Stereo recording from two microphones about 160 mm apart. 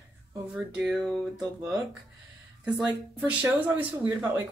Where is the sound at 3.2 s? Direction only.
10° right (ahead or behind).